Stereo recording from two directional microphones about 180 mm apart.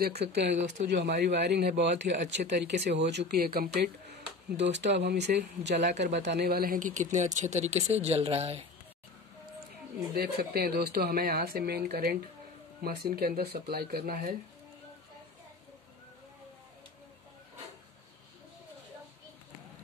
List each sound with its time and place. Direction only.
0.0 s speech: 65° right (ahead or behind)
0.6 s speech: 40° right (ahead or behind)
0.9 s speech: 65° right (ahead or behind); by 8.6 s 35° right (ahead or behind)
10.1 s speech: 60° right (ahead or behind)